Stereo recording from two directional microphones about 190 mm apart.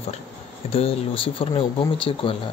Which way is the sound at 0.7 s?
30° left (ahead or behind).